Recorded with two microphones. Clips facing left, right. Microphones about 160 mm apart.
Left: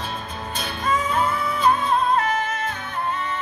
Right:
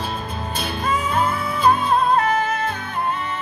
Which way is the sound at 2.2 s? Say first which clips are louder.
Right 3 dB; 30° right (ahead or behind).